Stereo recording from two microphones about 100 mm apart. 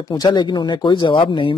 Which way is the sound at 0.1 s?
45° left (ahead or behind).